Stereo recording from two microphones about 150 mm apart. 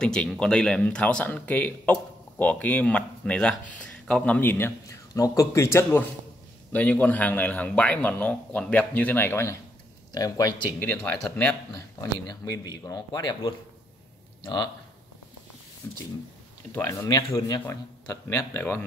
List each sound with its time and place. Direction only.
0.0 s a man's voice: 5° left (ahead or behind); by 10.5 s 25° left (ahead or behind)
10.8 s speech: 10° left (ahead or behind)
11.7 s a man's voice: 25° left (ahead or behind)
15.8 s a man's voice: 15° left (ahead or behind)